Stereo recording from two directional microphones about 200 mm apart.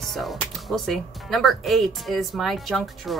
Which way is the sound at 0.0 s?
Centre (ahead or behind).